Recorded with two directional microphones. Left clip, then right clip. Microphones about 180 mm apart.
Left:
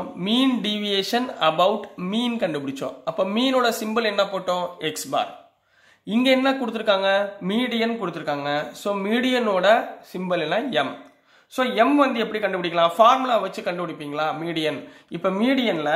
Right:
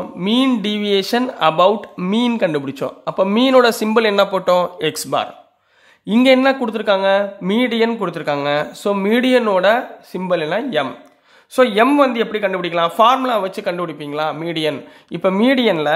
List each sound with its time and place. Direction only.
0.2 s speech: 30° right (ahead or behind)
11.5 s speech: 35° right (ahead or behind)